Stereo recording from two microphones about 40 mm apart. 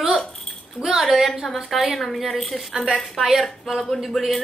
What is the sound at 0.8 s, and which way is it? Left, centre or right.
A woman's voice, centre.